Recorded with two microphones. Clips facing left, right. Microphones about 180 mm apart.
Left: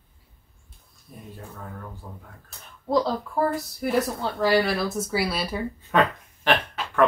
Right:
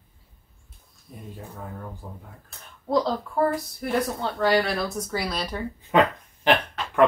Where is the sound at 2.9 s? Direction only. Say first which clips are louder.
Even; centre (ahead or behind).